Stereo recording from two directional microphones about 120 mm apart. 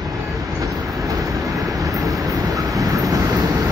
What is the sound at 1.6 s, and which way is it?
Vehicle, 25° right (ahead or behind).